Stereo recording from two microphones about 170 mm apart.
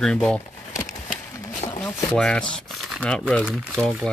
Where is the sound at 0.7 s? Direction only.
45° left (ahead or behind).